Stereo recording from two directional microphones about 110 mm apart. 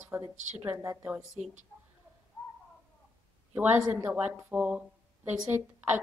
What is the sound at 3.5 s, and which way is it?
A woman's voice, 15° right (ahead or behind).